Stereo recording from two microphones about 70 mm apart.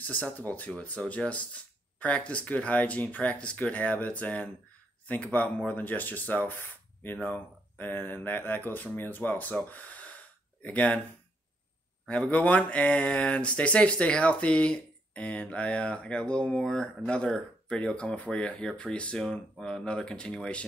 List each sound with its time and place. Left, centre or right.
0.0 s speech: left
9.7 s gasp: left
12.1 s speech: centre